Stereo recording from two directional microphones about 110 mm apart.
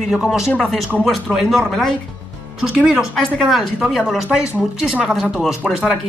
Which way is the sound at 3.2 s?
5° left (ahead or behind).